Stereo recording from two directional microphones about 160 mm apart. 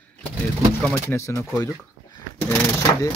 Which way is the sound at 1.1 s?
15° left (ahead or behind).